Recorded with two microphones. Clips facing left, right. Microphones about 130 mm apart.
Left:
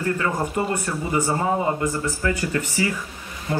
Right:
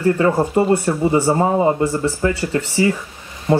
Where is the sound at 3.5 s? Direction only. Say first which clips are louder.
Right 9 dB; 25° right (ahead or behind).